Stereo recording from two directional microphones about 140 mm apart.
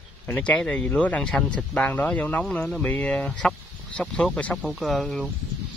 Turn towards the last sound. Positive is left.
turn(degrees=0)  # may be behind; listen again after turning